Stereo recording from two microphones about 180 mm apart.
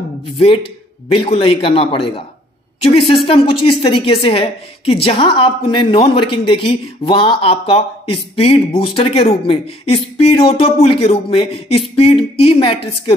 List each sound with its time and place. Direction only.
1.0 s a woman's voice: 30° left (ahead or behind)